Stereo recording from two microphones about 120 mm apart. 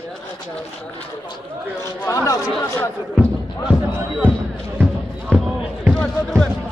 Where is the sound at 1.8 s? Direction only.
25° left (ahead or behind).